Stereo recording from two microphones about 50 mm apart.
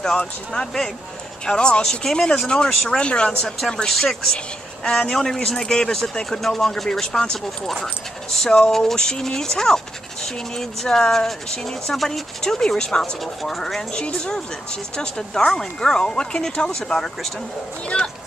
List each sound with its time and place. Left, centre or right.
0.5 s speech: centre
13.7 s speech: left
17.8 s speech: centre